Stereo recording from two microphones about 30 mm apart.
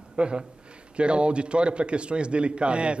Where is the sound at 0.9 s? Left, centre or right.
Right.